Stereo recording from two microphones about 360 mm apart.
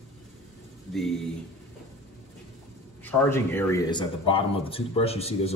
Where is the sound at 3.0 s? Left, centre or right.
Centre.